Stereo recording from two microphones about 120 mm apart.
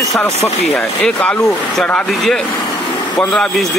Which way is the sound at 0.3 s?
65° left (ahead or behind).